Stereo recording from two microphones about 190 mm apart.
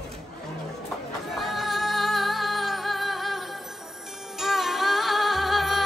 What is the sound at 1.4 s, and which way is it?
Music, centre (ahead or behind).